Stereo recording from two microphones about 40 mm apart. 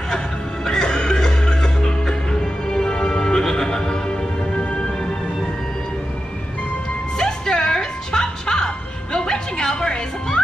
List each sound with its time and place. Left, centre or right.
0.7 s music: centre
7.2 s music: centre